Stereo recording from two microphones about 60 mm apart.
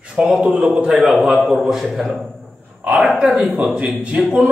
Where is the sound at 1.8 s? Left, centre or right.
Centre.